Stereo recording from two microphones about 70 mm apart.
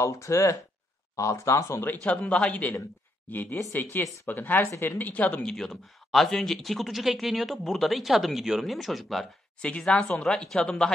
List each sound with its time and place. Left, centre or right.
0.0 s speech: left
1.8 s a man's voice: left
5.4 s speech: centre
9.6 s speech: centre